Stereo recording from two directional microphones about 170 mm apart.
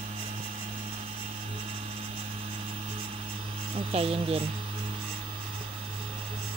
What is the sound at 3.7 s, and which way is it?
Speech, 35° right (ahead or behind).